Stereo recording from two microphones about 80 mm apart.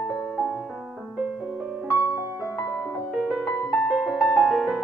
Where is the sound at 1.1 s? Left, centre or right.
Centre.